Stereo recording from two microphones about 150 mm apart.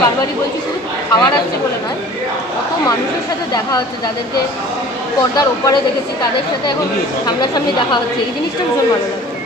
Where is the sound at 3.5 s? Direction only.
25° left (ahead or behind).